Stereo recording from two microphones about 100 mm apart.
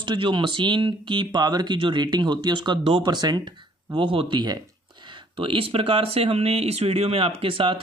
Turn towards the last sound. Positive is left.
turn(degrees=-60)  # may be behind; listen again after turning